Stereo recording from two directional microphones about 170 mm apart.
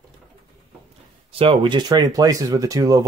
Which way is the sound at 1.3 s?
30° right (ahead or behind).